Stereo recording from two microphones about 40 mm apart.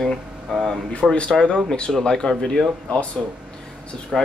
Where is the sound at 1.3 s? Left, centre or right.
Centre.